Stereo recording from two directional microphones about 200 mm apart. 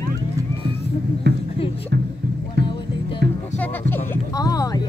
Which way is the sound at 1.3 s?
60° right (ahead or behind).